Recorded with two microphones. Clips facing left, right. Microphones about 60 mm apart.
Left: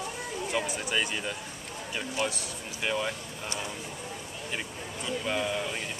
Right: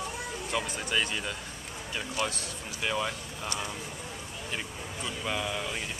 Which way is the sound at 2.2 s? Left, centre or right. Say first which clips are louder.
Left 1 dB; left.